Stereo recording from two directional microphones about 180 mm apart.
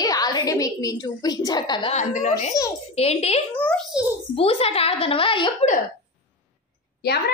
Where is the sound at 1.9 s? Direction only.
45° left (ahead or behind).